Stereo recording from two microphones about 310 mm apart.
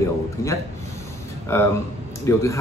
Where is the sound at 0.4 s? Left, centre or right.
Centre.